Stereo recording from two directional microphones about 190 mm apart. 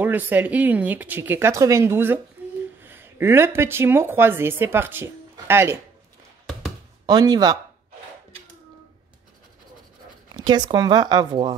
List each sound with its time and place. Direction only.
0.0 s speech: 10° right (ahead or behind)
7.1 s speech: 20° right (ahead or behind)
10.3 s speech: 20° right (ahead or behind)